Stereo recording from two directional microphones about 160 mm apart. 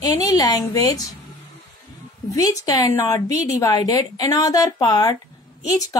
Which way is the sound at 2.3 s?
20° left (ahead or behind).